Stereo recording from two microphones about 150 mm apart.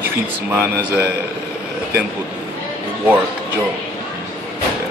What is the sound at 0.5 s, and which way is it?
Speech, 15° right (ahead or behind).